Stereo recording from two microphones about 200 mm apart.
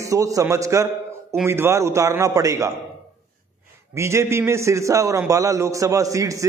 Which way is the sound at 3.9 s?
15° right (ahead or behind).